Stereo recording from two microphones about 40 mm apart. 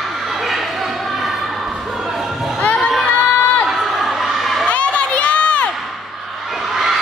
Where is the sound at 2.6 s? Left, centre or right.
Left.